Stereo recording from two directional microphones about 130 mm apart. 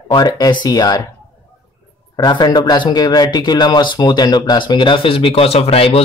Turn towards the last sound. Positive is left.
turn(degrees=50)  # may be behind; listen again after turning